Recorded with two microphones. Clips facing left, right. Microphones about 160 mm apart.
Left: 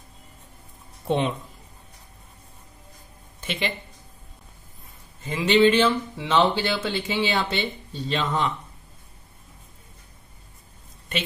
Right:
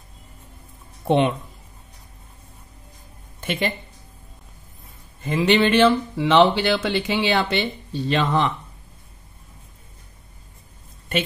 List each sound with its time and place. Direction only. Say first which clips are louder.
1.0 s speech: right 5 dB; 65° right (ahead or behind)
3.3 s speech: right 4 dB; 50° right (ahead or behind)
5.2 s speech: even; 60° right (ahead or behind)